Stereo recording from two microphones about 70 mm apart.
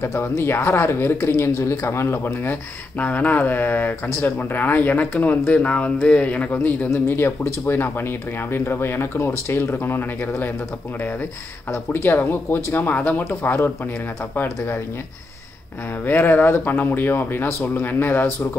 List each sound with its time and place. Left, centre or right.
0.2 s speech: left
3.0 s speech: left
6.9 s speech: left
11.7 s speech: left
16.1 s speech: left